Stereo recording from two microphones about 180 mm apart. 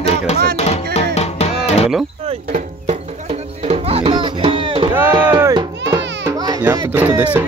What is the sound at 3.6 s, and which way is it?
Music, 30° right (ahead or behind).